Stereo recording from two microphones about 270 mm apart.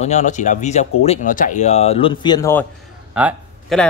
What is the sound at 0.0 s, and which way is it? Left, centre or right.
Speech, left.